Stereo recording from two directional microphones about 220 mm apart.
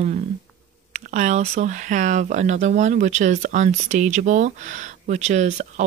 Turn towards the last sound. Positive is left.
turn(degrees=-30)  # may be behind; listen again after turning